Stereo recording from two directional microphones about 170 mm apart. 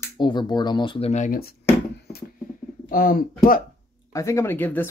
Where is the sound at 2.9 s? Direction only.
60° left (ahead or behind).